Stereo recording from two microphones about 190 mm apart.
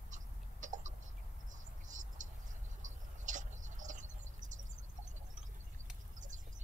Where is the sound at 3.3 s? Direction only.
40° right (ahead or behind).